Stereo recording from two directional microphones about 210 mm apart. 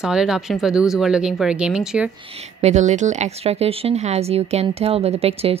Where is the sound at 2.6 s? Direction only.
35° right (ahead or behind).